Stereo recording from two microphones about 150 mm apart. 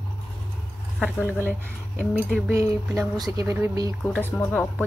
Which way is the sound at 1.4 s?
10° left (ahead or behind).